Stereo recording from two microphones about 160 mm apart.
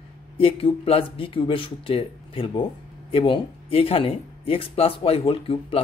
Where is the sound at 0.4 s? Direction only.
35° left (ahead or behind).